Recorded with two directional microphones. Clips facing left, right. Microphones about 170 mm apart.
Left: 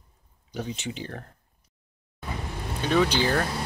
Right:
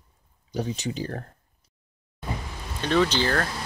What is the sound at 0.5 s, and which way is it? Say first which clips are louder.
Speech: right 4 dB; 40° right (ahead or behind).